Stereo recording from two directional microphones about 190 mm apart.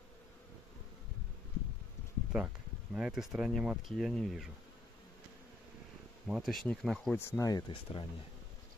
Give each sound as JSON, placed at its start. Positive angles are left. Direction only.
{"t": 2.3, "sound": "speech", "side_deg": -5}
{"t": 6.2, "sound": "speech", "side_deg": 0}
{"t": 7.2, "sound": "speech", "side_deg": 15}